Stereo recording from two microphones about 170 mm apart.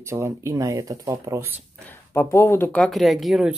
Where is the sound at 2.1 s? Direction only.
15° left (ahead or behind); by 3.6 s centre (ahead or behind).